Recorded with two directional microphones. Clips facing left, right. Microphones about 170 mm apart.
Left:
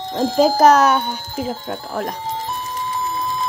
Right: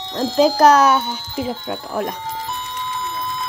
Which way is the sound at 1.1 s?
45° left (ahead or behind).